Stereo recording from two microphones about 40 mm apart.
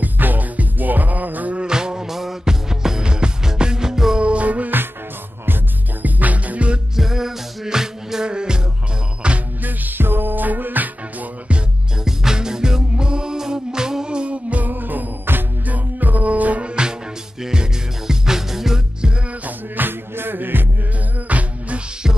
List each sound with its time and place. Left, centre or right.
0.0 s music: right
1.7 s music: centre
4.2 s music: right
6.0 s music: right
7.0 s music: centre
9.6 s music: right
12.0 s music: centre; by 14.7 s right
14.7 s music: right
15.6 s music: right
17.4 s music: centre
19.4 s music: right
21.3 s music: right